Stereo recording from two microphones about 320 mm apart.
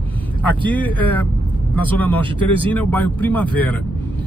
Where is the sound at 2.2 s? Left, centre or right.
Centre.